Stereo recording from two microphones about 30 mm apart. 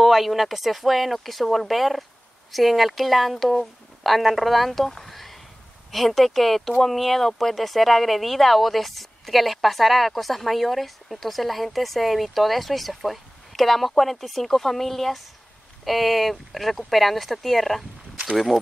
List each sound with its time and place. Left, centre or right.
0.0 s speech: centre